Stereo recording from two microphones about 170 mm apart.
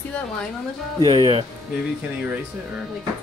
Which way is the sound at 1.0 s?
30° right (ahead or behind).